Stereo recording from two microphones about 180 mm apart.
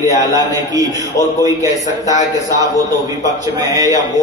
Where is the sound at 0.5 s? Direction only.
20° right (ahead or behind).